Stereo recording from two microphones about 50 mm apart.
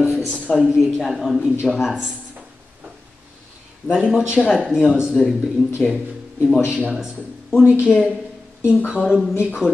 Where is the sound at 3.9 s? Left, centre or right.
Centre.